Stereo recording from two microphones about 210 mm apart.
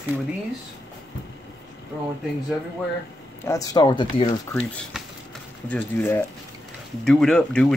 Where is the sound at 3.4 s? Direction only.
15° left (ahead or behind).